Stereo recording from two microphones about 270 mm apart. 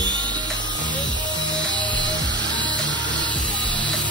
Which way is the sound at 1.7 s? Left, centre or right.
Centre.